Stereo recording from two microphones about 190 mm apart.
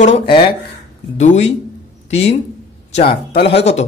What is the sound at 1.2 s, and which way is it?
Speech, 40° left (ahead or behind).